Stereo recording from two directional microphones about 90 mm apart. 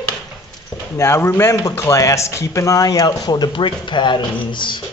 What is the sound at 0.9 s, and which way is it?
Speech, 30° left (ahead or behind).